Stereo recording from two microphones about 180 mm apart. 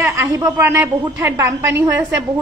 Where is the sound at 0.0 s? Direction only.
15° right (ahead or behind).